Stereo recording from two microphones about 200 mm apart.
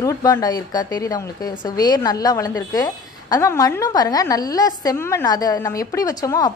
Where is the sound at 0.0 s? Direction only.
15° left (ahead or behind).